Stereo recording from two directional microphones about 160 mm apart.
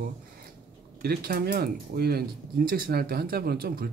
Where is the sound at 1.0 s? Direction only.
70° right (ahead or behind).